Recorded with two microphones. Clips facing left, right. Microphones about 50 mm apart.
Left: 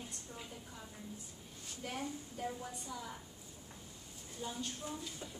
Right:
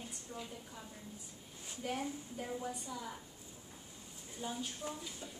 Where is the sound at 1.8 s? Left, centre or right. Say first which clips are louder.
Right 3 dB; centre.